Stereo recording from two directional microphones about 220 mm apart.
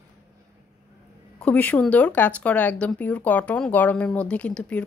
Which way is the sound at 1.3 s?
5° left (ahead or behind).